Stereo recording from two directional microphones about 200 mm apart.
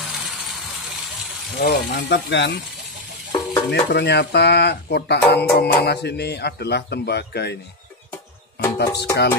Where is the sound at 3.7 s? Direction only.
55° left (ahead or behind).